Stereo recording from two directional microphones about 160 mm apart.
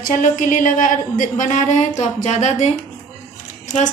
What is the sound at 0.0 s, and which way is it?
A woman's voice, 55° left (ahead or behind).